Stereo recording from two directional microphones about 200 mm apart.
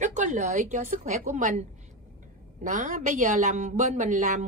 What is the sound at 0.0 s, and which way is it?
A woman's voice, 40° right (ahead or behind).